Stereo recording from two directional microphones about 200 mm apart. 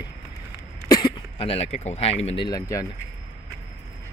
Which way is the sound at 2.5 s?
15° left (ahead or behind).